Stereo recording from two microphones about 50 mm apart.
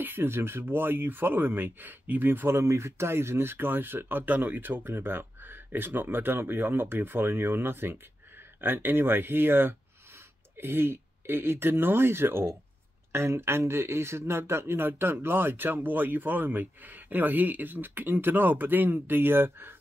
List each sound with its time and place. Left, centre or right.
0.0 s speech: right
4.8 s speech: right